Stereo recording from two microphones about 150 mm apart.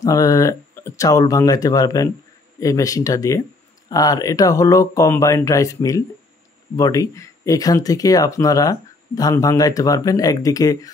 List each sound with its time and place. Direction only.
0.0 s speech: 20° left (ahead or behind)